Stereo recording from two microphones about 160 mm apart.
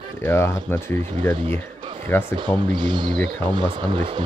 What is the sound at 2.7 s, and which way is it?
Speech, 30° right (ahead or behind).